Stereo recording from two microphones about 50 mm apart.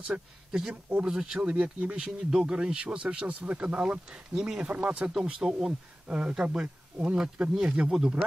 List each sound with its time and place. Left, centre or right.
0.0 s speech: centre
5.1 s speech: centre
5.7 s speech: right